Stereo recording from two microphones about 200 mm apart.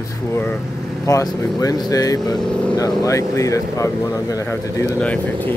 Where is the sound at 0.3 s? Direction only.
10° left (ahead or behind).